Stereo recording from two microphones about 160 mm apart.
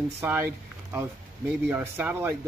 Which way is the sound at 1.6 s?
15° right (ahead or behind).